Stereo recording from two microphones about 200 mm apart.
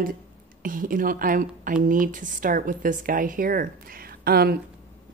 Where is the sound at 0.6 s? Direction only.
45° right (ahead or behind).